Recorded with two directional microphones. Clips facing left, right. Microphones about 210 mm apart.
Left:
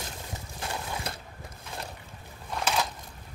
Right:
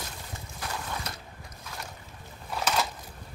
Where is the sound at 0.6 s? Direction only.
30° left (ahead or behind).